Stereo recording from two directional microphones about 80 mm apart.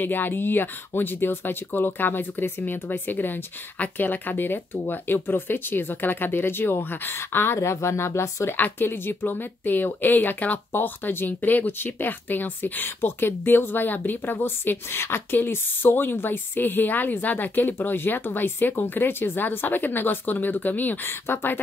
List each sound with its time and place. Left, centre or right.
0.0 s speech: left
8.5 s speech: left